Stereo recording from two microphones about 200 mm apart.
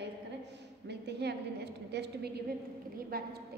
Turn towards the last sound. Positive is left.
turn(degrees=-45)  # may be behind; listen again after turning